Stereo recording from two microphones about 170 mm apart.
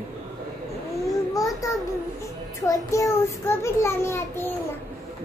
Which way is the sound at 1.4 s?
20° left (ahead or behind).